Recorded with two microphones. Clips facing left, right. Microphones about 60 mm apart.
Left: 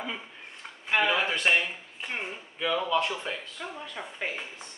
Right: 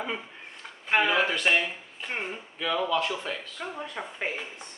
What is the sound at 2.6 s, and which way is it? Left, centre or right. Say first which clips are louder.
Speech: even; centre.